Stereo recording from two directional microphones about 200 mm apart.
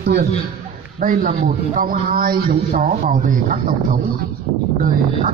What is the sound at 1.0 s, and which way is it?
A man's voice, 45° right (ahead or behind).